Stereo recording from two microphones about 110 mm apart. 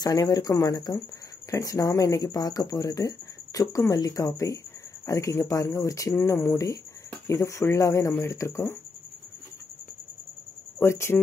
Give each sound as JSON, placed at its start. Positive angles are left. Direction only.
{"t": 0.0, "sound": "speech", "side_deg": 35}
{"t": 10.8, "sound": "speech", "side_deg": 25}